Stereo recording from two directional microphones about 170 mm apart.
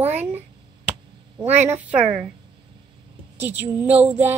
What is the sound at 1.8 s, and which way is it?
Speech, 10° right (ahead or behind).